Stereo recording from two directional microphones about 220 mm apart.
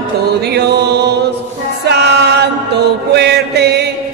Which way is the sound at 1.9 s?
50° right (ahead or behind).